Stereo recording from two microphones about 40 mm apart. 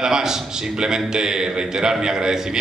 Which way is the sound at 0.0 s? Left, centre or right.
Centre.